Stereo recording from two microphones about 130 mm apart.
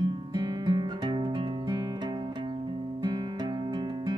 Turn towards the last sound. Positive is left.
turn(degrees=-35)  # may be behind; listen again after turning